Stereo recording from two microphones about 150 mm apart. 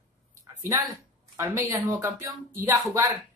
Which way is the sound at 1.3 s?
20° right (ahead or behind).